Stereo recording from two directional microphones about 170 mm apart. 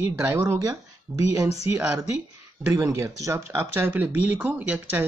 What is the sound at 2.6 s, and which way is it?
Speech, 20° right (ahead or behind).